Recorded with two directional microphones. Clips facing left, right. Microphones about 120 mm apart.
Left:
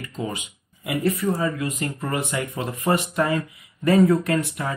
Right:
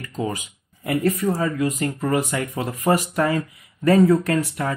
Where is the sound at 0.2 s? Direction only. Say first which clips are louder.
Right 3 dB; 25° right (ahead or behind).